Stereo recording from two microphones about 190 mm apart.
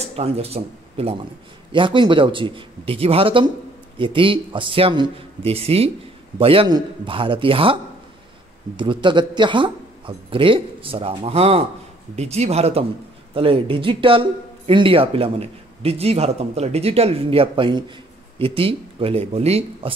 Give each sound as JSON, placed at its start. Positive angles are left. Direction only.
{"t": 0.0, "sound": "speech", "side_deg": -30}